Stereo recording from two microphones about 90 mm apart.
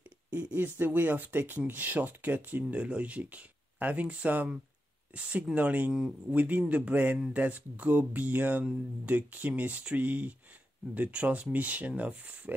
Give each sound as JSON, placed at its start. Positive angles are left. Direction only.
{"t": 0.3, "sound": "speech", "side_deg": -20}